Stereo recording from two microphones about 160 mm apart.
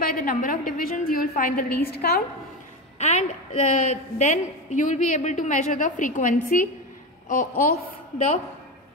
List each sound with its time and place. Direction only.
0.0 s a woman's voice: 60° left (ahead or behind)
3.0 s a woman's voice: 45° left (ahead or behind); by 8.3 s 65° left (ahead or behind)